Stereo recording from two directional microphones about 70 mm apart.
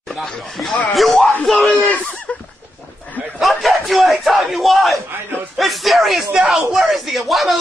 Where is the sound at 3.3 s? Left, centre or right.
Centre.